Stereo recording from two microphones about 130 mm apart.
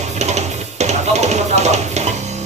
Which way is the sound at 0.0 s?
60° right (ahead or behind).